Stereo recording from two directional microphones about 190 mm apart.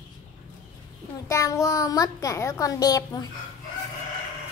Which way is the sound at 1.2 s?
15° left (ahead or behind).